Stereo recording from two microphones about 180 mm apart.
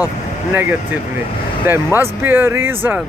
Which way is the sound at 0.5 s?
10° right (ahead or behind).